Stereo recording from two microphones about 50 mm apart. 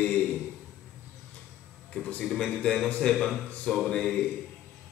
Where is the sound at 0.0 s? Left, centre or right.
Centre.